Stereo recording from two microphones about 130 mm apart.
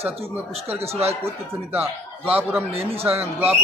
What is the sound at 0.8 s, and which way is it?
Speech, 50° right (ahead or behind).